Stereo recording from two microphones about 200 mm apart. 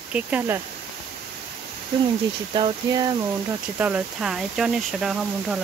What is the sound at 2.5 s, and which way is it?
Speech, 20° right (ahead or behind).